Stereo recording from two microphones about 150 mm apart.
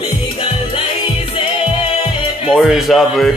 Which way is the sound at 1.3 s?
35° left (ahead or behind).